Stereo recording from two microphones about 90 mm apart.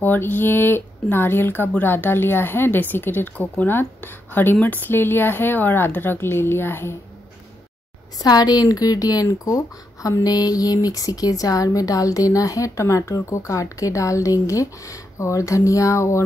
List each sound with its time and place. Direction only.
0.0 s speech: 20° left (ahead or behind)
8.2 s speech: 45° left (ahead or behind)